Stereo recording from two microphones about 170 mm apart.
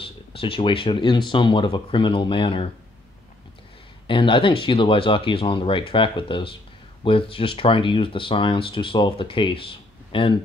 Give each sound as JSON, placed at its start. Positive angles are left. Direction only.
{"t": 0.0, "sound": "speech", "side_deg": 30}
{"t": 4.1, "sound": "speech", "side_deg": 30}